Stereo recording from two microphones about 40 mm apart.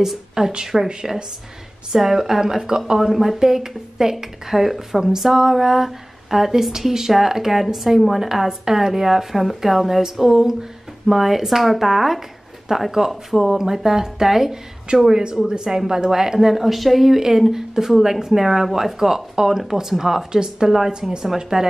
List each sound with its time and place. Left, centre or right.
0.3 s a woman's voice: centre